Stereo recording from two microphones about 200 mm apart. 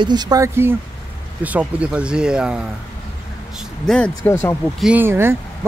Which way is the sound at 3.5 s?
5° left (ahead or behind).